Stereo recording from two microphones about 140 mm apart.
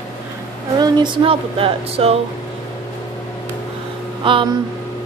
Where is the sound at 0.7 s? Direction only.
30° right (ahead or behind).